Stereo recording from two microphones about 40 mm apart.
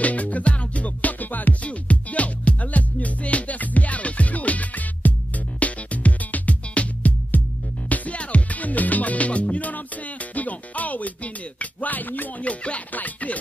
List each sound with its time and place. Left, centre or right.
0.0 s music: left
1.6 s music: left
11.6 s a sound: left
12.4 s music: left